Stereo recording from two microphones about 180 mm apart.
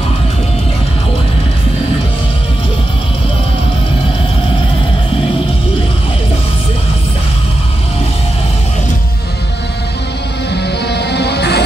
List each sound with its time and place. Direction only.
10.5 s music: 65° left (ahead or behind)